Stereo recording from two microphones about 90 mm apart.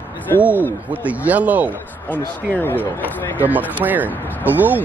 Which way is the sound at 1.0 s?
15° right (ahead or behind).